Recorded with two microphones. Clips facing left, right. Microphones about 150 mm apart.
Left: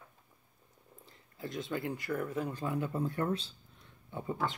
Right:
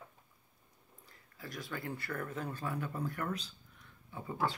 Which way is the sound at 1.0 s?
25° left (ahead or behind).